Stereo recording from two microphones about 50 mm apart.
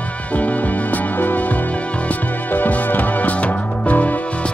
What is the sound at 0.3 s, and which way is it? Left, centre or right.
Music, left.